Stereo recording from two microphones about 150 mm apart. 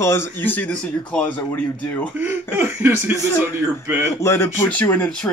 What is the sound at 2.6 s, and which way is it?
Speech, 15° right (ahead or behind).